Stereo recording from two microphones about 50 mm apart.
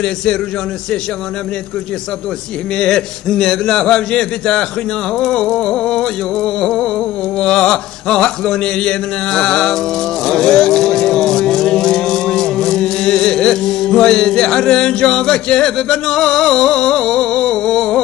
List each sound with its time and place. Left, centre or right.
0.0 s mantra: centre
2.8 s mantra: centre
10.2 s vehicle: centre